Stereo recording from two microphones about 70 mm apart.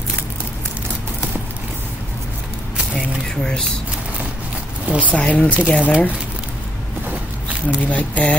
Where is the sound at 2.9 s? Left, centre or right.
Centre.